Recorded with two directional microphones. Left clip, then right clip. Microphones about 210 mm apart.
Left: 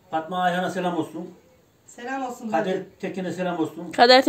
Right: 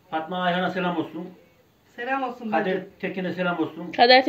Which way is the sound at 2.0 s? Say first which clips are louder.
Right 2 dB; 15° left (ahead or behind).